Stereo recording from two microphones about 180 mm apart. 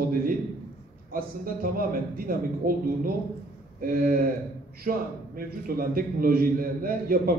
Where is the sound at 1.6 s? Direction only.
55° right (ahead or behind).